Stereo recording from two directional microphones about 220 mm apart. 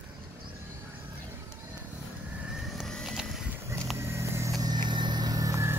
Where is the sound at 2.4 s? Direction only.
Centre (ahead or behind).